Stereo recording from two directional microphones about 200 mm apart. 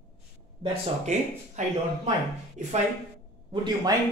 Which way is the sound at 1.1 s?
35° right (ahead or behind).